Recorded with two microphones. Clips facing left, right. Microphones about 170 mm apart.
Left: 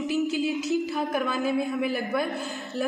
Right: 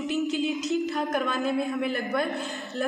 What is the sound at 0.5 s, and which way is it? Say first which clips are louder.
Speech: left 1 dB; 20° right (ahead or behind).